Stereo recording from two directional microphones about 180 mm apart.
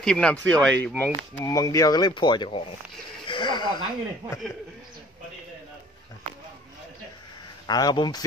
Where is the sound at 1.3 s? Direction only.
20° left (ahead or behind).